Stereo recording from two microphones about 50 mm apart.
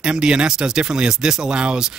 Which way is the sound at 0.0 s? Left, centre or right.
Centre.